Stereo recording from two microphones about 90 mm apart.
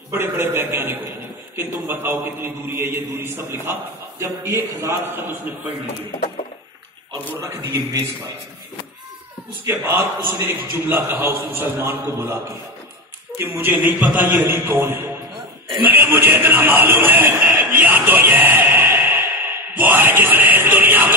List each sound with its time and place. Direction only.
0.1 s a man's voice: 30° right (ahead or behind)
7.3 s a man's voice: 35° right (ahead or behind)
9.7 s a man's voice: 25° right (ahead or behind)
13.4 s a man's voice: 25° right (ahead or behind)
15.8 s a sound: 20° right (ahead or behind)
19.8 s a man's voice: 20° right (ahead or behind)